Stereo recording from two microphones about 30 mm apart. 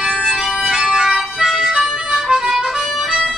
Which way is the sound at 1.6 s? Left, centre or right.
Right.